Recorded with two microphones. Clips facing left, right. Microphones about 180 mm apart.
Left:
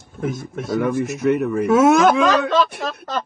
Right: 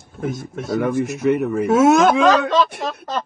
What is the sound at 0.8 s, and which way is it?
Speech, 55° right (ahead or behind).